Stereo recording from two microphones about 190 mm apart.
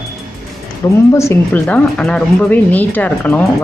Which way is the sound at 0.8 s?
15° left (ahead or behind).